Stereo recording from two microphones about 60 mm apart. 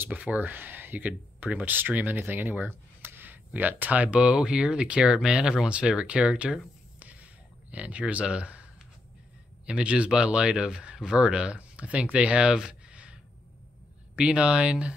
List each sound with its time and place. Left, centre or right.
0.1 s speech: right
7.0 s whispering: right
7.7 s speech: right
9.7 s speech: centre